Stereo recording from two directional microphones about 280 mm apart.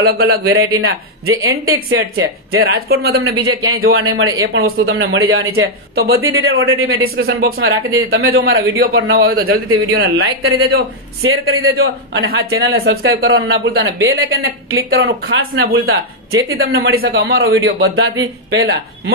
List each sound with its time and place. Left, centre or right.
0.0 s a man's voice: right
0.7 s speech: right
5.9 s a man's voice: right
6.2 s a man's voice: right
12.7 s a man's voice: right